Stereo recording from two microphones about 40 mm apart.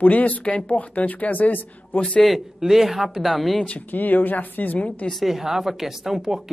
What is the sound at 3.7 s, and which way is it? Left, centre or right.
A woman's voice, left.